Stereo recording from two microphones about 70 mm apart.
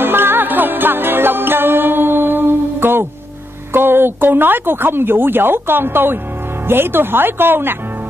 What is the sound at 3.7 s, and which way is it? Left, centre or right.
A woman's voice, right.